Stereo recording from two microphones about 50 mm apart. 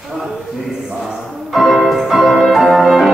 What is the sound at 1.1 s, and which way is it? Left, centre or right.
Music, centre.